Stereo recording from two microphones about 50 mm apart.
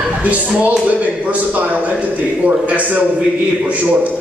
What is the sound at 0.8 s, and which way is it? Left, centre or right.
A man's voice, right.